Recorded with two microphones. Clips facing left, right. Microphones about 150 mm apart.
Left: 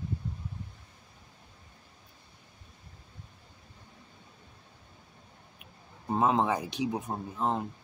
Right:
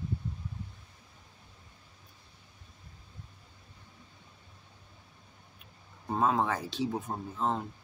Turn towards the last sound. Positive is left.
turn(degrees=15)  # may be behind; listen again after turning